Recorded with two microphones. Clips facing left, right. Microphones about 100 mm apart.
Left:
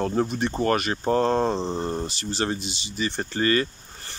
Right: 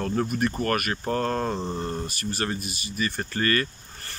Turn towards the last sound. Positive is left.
turn(degrees=20)  # may be behind; listen again after turning